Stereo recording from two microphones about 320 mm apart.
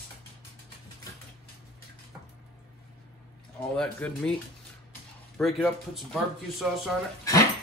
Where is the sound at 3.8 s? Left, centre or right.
Centre.